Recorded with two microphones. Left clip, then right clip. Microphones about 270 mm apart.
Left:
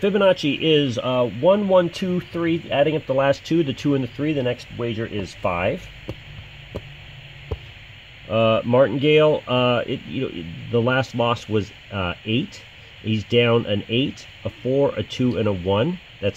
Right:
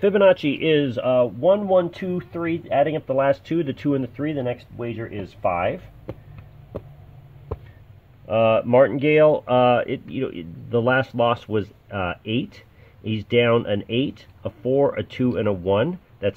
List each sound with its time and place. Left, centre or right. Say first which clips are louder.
0.0 s speech: right 2 dB; centre
1.1 s speech: even; left
8.3 s speech: right 1 dB; centre